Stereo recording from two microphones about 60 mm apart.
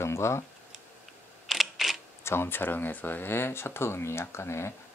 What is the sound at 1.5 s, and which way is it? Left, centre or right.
Camera, centre.